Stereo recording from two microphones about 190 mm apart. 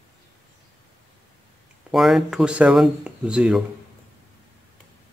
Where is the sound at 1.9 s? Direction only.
Centre (ahead or behind).